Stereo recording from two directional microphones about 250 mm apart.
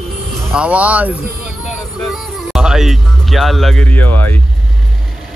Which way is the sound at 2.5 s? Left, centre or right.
Centre.